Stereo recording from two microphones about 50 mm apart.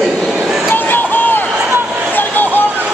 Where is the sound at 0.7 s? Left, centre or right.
Left.